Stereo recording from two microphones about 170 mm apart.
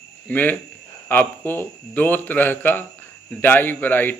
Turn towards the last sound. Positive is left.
turn(degrees=10)  # may be behind; listen again after turning